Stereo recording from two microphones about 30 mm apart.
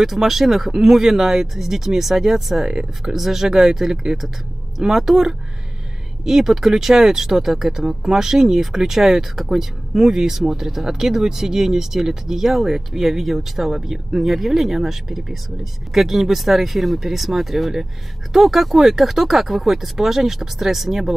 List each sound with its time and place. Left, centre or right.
0.0 s speech: centre